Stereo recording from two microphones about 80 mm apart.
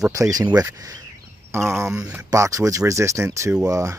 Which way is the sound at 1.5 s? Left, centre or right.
Right.